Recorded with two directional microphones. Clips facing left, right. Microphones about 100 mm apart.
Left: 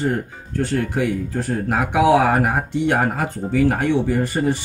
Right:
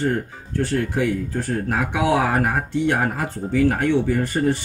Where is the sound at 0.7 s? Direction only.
25° left (ahead or behind).